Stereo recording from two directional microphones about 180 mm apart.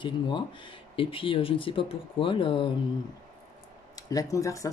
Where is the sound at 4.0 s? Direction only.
20° left (ahead or behind).